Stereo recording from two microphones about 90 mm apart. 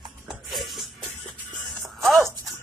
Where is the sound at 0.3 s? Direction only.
Centre (ahead or behind).